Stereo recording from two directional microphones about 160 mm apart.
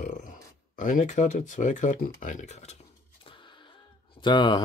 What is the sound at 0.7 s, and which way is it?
Speech, 55° left (ahead or behind).